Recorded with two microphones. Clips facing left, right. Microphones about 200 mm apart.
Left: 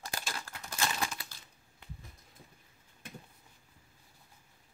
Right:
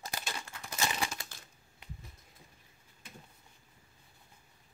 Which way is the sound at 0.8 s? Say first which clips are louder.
Even; 15° right (ahead or behind).